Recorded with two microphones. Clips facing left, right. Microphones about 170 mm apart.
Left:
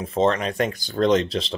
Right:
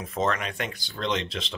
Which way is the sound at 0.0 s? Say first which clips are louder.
Left 7 dB; 30° left (ahead or behind).